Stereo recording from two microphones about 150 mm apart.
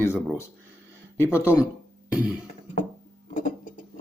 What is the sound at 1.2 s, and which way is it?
Speech, 15° left (ahead or behind).